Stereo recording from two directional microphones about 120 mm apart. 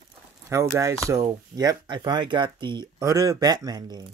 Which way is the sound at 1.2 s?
35° right (ahead or behind).